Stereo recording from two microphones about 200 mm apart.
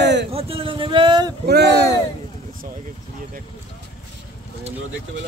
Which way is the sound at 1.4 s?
55° right (ahead or behind).